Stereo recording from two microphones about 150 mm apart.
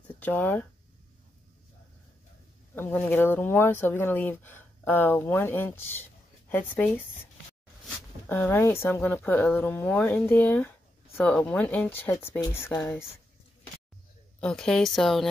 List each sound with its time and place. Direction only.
0.2 s speech: 10° left (ahead or behind)
2.7 s speech: 15° left (ahead or behind)
8.3 s speech: 15° left (ahead or behind)
14.4 s speech: 5° left (ahead or behind)